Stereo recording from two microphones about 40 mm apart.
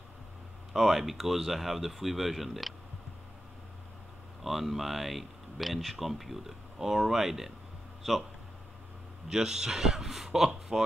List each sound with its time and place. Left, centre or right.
0.7 s speech: centre
4.4 s speech: centre
9.3 s a man's voice: centre